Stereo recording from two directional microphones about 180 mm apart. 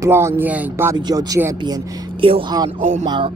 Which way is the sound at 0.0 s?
15° right (ahead or behind).